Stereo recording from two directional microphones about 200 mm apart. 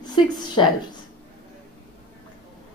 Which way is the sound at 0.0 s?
20° left (ahead or behind).